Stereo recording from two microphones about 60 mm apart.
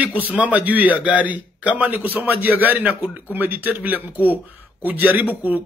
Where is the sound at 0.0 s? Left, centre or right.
Right.